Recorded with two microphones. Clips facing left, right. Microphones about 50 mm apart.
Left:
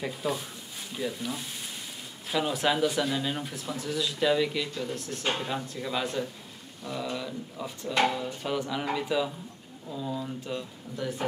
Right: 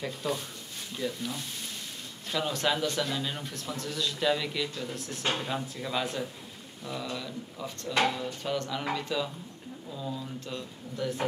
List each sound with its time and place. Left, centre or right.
0.0 s a man's voice: centre